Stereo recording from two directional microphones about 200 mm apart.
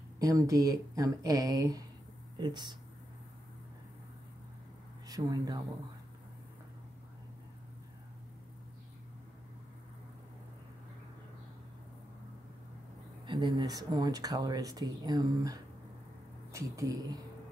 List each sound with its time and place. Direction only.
0.2 s speech: 15° right (ahead or behind)
5.0 s speech: 20° right (ahead or behind)
13.3 s speech: 20° right (ahead or behind)